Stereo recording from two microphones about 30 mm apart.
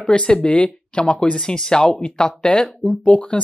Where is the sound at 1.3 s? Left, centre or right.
Centre.